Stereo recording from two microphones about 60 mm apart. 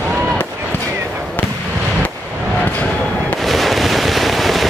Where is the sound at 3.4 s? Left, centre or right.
Centre.